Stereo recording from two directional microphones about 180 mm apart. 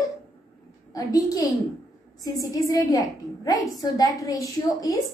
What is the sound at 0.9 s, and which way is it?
A woman's voice, 20° left (ahead or behind).